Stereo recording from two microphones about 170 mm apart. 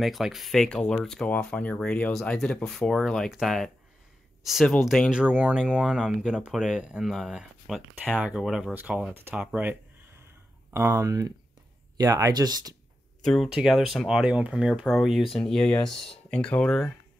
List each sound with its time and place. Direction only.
0.0 s speech: centre (ahead or behind); by 12.7 s 25° right (ahead or behind)
13.2 s speech: centre (ahead or behind)